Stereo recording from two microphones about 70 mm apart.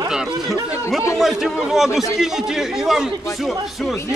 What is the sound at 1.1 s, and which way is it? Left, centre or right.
A man's voice, centre.